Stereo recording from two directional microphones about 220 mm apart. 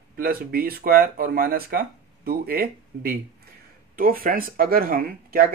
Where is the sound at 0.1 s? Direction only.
40° right (ahead or behind).